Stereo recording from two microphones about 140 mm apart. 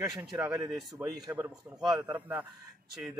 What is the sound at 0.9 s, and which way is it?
A man's voice, 25° right (ahead or behind).